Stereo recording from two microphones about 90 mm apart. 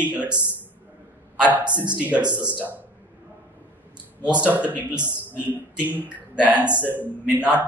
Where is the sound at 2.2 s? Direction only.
55° right (ahead or behind).